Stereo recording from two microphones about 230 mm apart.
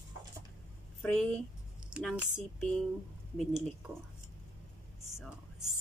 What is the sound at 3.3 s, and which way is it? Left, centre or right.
Speech, centre.